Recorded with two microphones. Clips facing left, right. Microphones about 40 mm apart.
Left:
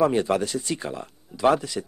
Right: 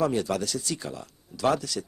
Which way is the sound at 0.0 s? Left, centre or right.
Left.